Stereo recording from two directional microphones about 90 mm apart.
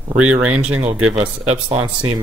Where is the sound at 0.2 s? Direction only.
15° right (ahead or behind).